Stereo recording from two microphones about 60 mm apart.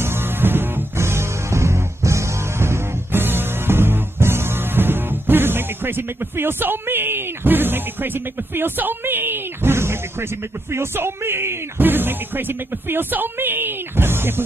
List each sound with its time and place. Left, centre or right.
0.0 s music: right
10.7 s speech: right